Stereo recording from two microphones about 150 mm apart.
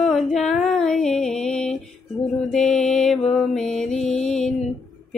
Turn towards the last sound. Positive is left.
turn(degrees=0)  # may be behind; listen again after turning